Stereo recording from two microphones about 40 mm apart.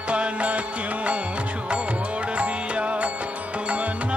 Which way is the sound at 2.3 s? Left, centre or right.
Right.